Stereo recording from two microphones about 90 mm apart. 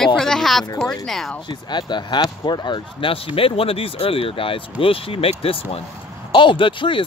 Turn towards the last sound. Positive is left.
turn(degrees=70)  # may be behind; listen again after turning